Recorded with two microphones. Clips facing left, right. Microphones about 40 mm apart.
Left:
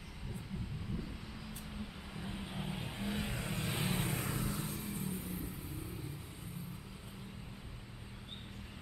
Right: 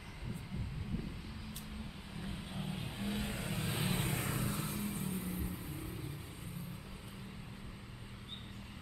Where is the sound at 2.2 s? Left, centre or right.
Centre.